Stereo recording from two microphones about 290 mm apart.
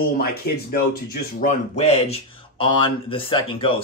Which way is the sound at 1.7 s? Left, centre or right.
Left.